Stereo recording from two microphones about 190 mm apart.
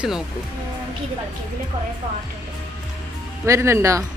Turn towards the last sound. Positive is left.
turn(degrees=-15)  # may be behind; listen again after turning